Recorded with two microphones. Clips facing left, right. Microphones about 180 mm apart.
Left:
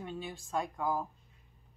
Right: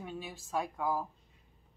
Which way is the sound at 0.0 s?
5° right (ahead or behind).